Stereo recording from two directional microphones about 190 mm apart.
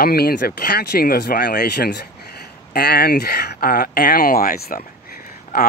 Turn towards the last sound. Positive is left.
turn(degrees=55)  # may be behind; listen again after turning